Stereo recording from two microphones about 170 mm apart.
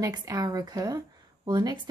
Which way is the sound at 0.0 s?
20° right (ahead or behind).